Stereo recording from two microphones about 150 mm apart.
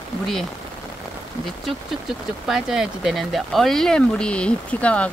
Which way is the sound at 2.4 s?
Centre (ahead or behind).